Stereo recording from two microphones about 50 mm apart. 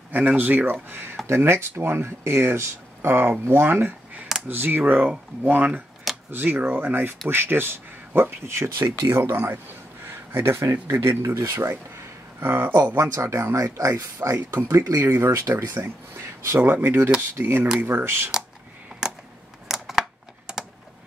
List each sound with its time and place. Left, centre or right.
0.4 s speech: right
0.8 s speech: right
12.4 s speech: right
12.9 s speech: right
13.7 s speech: right
14.8 s speech: right
16.8 s speech: right
19.0 s computer keyboard: centre
19.7 s typing: centre